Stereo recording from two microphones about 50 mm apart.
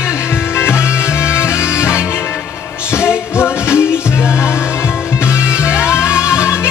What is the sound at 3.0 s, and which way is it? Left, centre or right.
Music, left.